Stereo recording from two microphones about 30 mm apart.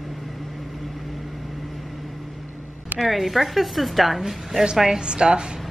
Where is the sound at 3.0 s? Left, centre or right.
Centre.